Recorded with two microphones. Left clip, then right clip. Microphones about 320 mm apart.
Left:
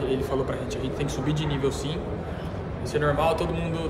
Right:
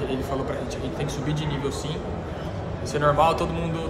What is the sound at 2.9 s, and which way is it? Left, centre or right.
Speech, centre.